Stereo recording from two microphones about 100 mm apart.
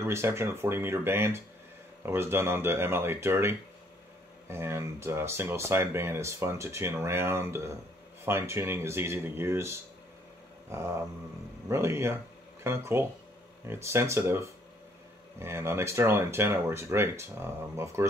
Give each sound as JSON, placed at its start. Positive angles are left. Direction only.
{"t": 0.0, "sound": "speech", "side_deg": -25}